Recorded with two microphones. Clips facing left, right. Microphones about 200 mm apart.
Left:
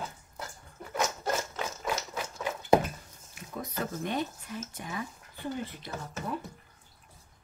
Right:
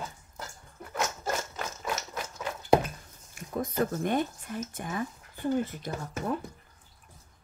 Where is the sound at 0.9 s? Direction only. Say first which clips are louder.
Left 1 dB; 5° right (ahead or behind).